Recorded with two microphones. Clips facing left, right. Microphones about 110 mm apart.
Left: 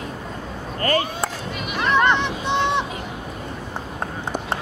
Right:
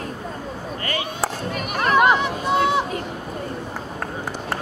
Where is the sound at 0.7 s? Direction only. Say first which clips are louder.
Left 8 dB; 40° left (ahead or behind).